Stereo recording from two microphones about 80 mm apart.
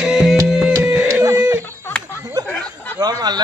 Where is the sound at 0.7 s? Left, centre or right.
Right.